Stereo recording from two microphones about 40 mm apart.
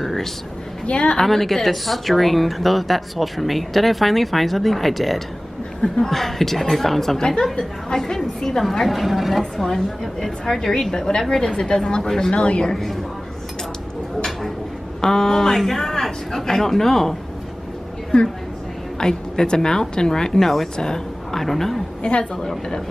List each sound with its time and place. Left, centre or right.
0.0 s a sound: centre
0.8 s a woman's voice: left
1.1 s a woman's voice: centre
5.8 s a woman's voice: centre
8.8 s a woman's voice: centre
10.2 s a man's voice: centre
15.0 s a man's voice: centre
18.9 s a man's voice: centre
22.0 s a woman's voice: left